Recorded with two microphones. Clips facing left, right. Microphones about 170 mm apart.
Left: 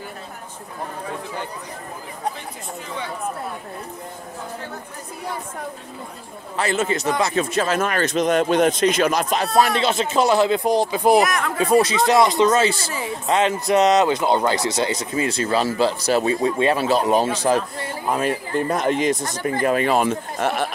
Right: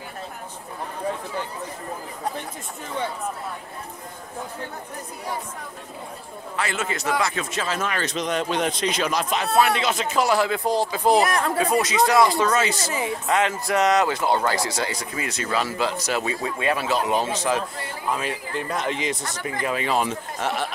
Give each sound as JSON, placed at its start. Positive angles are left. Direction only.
{"t": 6.5, "sound": "speech", "side_deg": 30}
{"t": 7.5, "sound": "speech", "side_deg": 50}
{"t": 11.2, "sound": "speech", "side_deg": -30}
{"t": 11.6, "sound": "a man's voice", "side_deg": 30}